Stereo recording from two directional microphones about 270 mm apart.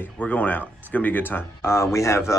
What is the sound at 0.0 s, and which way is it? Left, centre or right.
Speech, centre.